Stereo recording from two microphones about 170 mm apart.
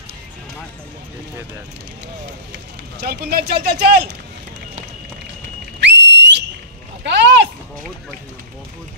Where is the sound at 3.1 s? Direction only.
65° right (ahead or behind).